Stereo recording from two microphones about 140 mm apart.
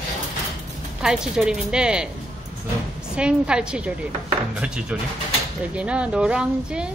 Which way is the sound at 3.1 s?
5° right (ahead or behind).